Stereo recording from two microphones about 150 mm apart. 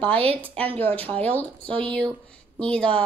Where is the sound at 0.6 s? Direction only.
10° left (ahead or behind).